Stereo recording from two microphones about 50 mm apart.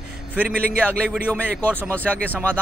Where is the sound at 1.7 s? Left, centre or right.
Right.